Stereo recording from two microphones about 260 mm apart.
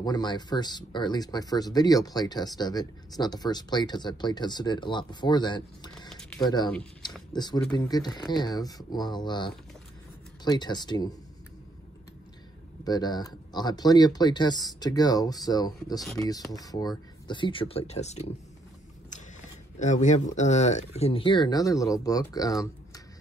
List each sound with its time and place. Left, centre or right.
0.0 s speech: centre
6.0 s typing: centre
7.3 s speech: centre
12.8 s speech: centre
19.8 s speech: left